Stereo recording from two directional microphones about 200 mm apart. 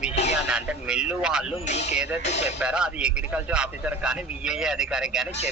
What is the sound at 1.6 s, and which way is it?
Speech, 35° left (ahead or behind).